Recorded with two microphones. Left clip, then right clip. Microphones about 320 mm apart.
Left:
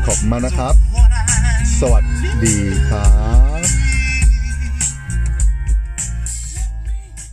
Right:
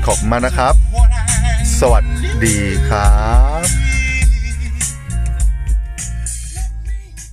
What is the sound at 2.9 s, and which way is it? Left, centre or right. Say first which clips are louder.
Music: right 7 dB; right.